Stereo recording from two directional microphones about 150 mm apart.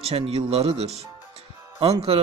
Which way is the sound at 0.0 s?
40° right (ahead or behind).